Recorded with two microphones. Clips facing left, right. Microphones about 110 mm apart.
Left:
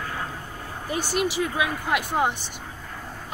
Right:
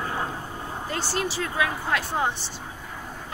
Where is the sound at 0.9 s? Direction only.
15° left (ahead or behind).